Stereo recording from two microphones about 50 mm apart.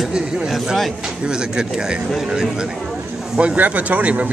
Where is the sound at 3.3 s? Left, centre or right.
Right.